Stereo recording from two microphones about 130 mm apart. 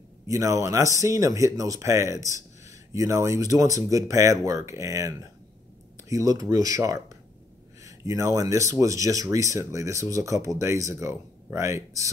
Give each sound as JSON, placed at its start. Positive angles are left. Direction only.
{"t": 0.3, "sound": "speech", "side_deg": -25}